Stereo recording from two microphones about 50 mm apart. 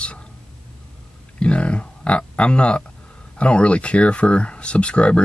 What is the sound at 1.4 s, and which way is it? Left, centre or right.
A man's voice, left.